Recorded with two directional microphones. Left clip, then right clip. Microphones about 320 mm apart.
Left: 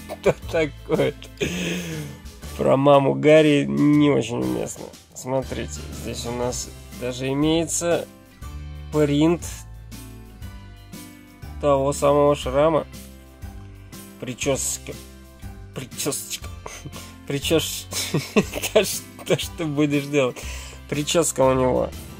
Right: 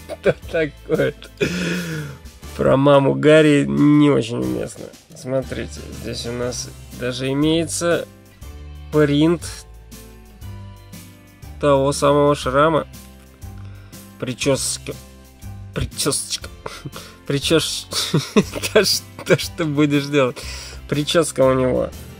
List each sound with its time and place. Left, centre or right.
0.1 s speech: centre
11.6 s speech: centre
14.2 s speech: centre
16.0 s speech: centre